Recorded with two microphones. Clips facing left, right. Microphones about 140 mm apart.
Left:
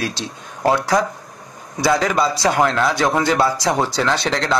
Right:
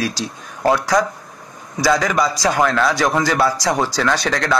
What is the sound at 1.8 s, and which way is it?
A man's voice, 30° left (ahead or behind).